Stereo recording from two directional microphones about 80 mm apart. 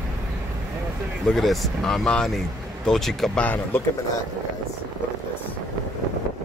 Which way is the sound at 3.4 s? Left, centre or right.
Left.